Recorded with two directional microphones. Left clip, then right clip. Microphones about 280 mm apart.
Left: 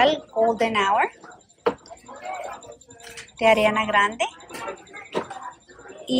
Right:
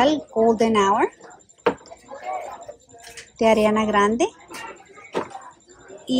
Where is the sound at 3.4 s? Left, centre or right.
Centre.